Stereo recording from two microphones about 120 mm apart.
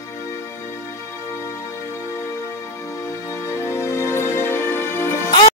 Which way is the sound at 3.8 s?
20° left (ahead or behind).